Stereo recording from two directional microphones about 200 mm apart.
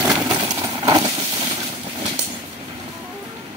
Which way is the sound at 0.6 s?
20° right (ahead or behind).